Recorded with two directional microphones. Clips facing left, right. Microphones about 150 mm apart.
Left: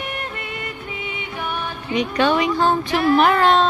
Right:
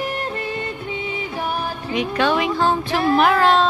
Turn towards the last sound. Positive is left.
turn(degrees=0)  # may be behind; listen again after turning